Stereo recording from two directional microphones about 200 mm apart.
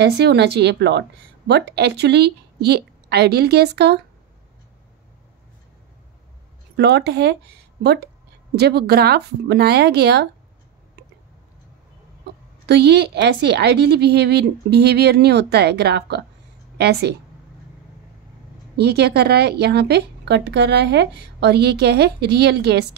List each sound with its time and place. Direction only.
0.0 s speech: 55° right (ahead or behind)
6.8 s speech: 55° right (ahead or behind)
12.6 s speech: 55° right (ahead or behind)
18.8 s speech: 55° right (ahead or behind)